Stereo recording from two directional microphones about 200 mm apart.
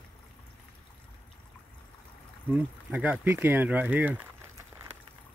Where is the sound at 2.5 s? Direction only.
5° right (ahead or behind).